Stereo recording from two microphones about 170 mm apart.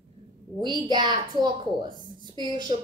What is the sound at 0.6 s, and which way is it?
A woman's voice, 25° right (ahead or behind).